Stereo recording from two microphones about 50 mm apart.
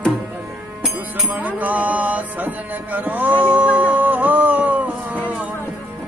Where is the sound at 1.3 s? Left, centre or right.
Right.